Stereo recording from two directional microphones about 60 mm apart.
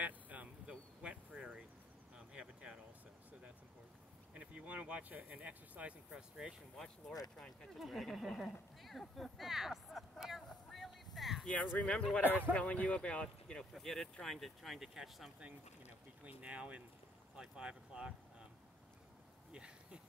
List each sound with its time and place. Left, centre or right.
0.0 s a sound: right
4.3 s speech: right
6.0 s speech: centre
7.3 s speech: centre
9.1 s vehicle: centre
11.8 s speech: centre
13.7 s speech: centre
16.3 s speech: right
19.5 s a sound: centre